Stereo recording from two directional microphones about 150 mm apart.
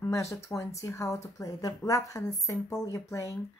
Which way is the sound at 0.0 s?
20° left (ahead or behind).